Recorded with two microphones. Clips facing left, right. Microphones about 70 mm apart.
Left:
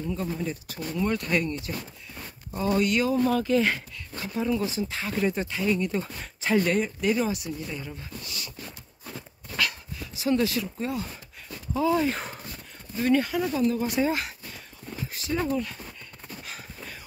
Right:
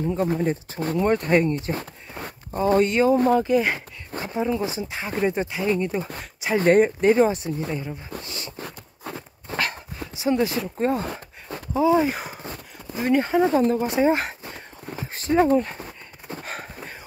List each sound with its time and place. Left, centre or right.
0.0 s speech: right
2.7 s speech: right
6.6 s speech: right
9.1 s dog: right
10.1 s speech: right
10.6 s speech: right
11.7 s speech: right
13.7 s speech: right
14.2 s a sound: right
15.1 s horse: right